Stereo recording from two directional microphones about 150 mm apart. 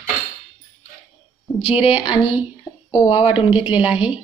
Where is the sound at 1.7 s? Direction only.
40° left (ahead or behind).